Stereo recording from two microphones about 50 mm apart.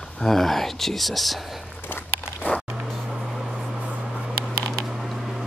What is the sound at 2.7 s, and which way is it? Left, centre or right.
Vehicle, centre.